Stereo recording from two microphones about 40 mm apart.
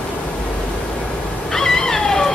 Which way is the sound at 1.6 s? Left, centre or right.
Centre.